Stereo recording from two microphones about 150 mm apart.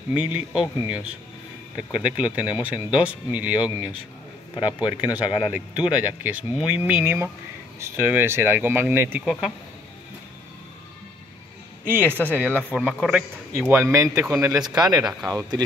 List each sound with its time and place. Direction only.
0.2 s speech: 5° right (ahead or behind)
11.8 s speech: 15° right (ahead or behind)
12.4 s speech: 10° left (ahead or behind)
12.7 s speech: 5° right (ahead or behind)
13.6 s speech: 15° right (ahead or behind)
14.6 s speech: 5° right (ahead or behind)
15.2 s speech: 25° right (ahead or behind)